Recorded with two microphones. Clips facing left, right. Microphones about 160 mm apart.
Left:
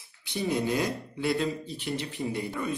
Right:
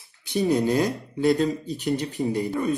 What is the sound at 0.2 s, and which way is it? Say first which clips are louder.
Speech: right 7 dB; 40° right (ahead or behind).